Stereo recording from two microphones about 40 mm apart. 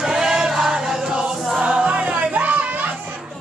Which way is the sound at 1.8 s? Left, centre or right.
Right.